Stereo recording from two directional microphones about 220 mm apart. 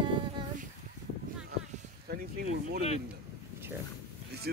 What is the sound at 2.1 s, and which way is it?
Speech, 45° right (ahead or behind).